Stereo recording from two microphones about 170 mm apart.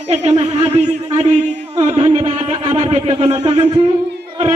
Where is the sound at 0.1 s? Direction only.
40° right (ahead or behind).